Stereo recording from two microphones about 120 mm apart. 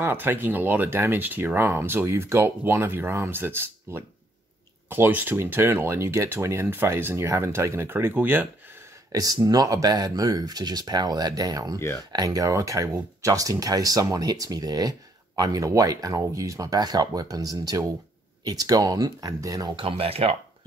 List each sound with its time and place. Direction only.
0.0 s speech: 15° right (ahead or behind)
9.1 s speech: 30° right (ahead or behind)
19.7 s speech: 50° right (ahead or behind)